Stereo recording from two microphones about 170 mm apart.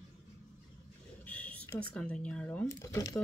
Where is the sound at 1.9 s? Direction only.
5° left (ahead or behind).